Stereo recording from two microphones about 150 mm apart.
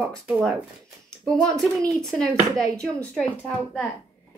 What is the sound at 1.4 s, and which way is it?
A woman's voice, 5° left (ahead or behind).